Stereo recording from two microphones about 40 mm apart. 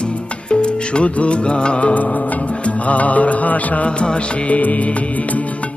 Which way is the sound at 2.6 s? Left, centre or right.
Left.